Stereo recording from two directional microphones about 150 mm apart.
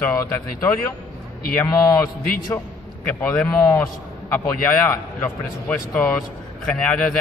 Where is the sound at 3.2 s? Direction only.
5° left (ahead or behind).